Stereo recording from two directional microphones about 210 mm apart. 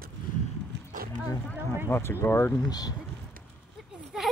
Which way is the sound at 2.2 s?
10° left (ahead or behind).